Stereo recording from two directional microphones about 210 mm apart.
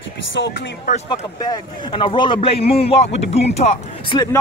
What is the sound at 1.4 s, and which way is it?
A man's voice, 20° left (ahead or behind).